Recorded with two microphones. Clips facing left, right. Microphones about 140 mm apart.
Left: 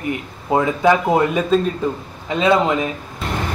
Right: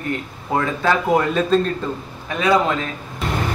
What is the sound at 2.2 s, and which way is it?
Speech, 20° left (ahead or behind).